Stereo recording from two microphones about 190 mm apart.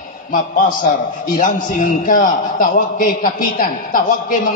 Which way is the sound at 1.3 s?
45° left (ahead or behind).